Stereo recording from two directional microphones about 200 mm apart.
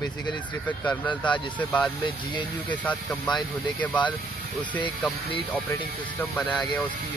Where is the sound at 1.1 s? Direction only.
25° left (ahead or behind).